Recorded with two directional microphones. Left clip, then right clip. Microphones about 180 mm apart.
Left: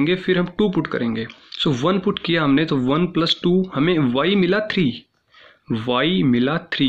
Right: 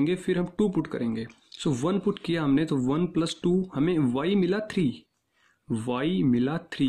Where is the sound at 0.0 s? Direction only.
55° right (ahead or behind).